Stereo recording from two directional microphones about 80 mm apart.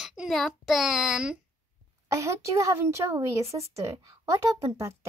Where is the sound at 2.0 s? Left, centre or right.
Right.